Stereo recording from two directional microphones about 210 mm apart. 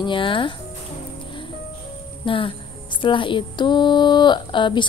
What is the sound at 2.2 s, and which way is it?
A woman's voice, 25° left (ahead or behind).